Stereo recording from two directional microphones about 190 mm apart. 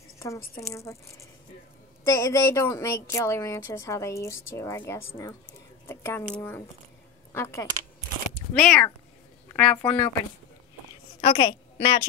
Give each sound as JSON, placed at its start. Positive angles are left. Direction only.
{"t": 0.6, "sound": "a woman's voice", "side_deg": 15}
{"t": 8.5, "sound": "a woman's voice", "side_deg": 5}
{"t": 11.3, "sound": "a woman's voice", "side_deg": 25}